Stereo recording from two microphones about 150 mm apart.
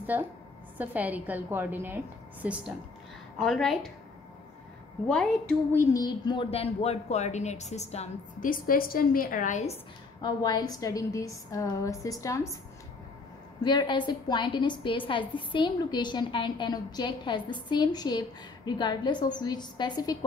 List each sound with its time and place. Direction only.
0.0 s a woman's voice: 10° right (ahead or behind)
3.3 s a woman's voice: 5° left (ahead or behind)
5.0 s a woman's voice: 5° left (ahead or behind)
6.0 s a woman's voice: 30° left (ahead or behind); by 8.5 s 45° left (ahead or behind)
8.5 s a woman's voice: 75° left (ahead or behind); by 9.8 s 55° left (ahead or behind)
10.2 s a woman's voice: 25° left (ahead or behind)
13.6 s a woman's voice: 30° left (ahead or behind)